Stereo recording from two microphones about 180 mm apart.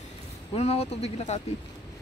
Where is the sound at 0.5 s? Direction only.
35° left (ahead or behind).